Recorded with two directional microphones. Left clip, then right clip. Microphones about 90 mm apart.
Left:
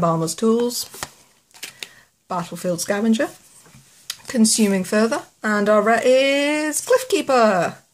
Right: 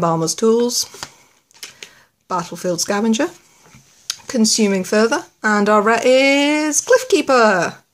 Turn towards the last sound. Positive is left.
turn(degrees=-30)  # may be behind; listen again after turning